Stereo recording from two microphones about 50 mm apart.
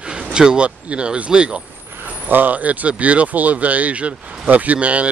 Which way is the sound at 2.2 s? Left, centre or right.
Right.